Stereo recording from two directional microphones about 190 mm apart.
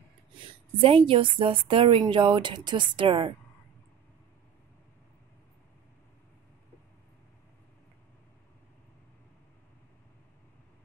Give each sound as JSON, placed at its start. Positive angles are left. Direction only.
{"t": 0.7, "sound": "a woman's voice", "side_deg": -30}